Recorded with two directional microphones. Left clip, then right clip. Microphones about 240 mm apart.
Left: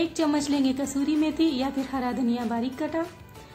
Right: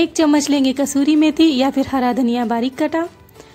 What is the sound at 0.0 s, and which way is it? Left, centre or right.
A woman's voice, right.